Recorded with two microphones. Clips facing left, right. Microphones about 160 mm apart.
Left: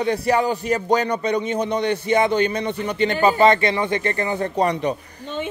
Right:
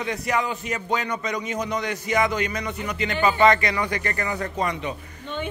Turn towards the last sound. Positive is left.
turn(degrees=35)  # may be behind; listen again after turning